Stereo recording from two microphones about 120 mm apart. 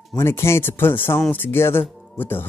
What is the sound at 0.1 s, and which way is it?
Speech, 20° left (ahead or behind).